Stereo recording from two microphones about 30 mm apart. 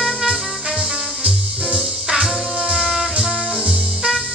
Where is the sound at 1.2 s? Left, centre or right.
Right.